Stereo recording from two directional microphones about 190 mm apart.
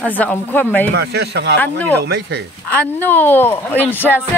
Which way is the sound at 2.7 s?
10° left (ahead or behind).